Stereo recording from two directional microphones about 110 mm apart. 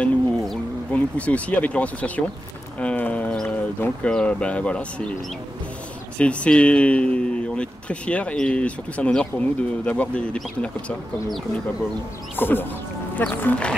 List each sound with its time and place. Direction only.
0.0 s a sound: 10° left (ahead or behind)
2.8 s speech: 10° left (ahead or behind)
6.1 s speech: 10° left (ahead or behind)
12.4 s speech: 20° left (ahead or behind)